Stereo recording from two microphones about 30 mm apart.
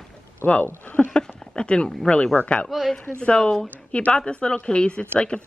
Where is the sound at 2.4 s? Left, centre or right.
Left.